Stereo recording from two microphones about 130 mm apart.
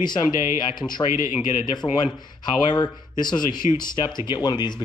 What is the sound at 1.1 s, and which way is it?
Speech, 90° left.